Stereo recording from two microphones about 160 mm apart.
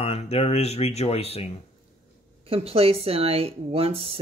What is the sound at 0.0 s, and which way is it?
Speech, 40° left (ahead or behind).